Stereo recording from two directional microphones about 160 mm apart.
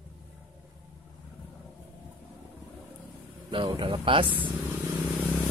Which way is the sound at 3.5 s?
30° right (ahead or behind).